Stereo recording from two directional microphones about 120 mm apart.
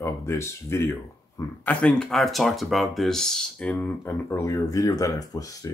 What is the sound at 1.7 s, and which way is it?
Speech, 10° left (ahead or behind).